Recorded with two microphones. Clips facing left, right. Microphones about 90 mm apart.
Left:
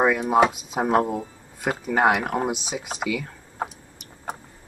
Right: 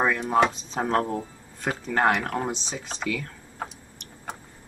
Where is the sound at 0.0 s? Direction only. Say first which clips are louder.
Left 3 dB; 10° left (ahead or behind).